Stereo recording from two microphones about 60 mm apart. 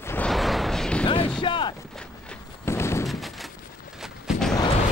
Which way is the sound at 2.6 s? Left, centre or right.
Left.